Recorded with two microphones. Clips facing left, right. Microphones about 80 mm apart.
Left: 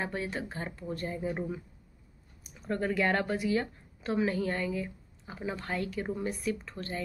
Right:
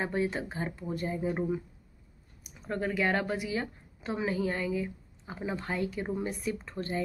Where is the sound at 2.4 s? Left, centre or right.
Centre.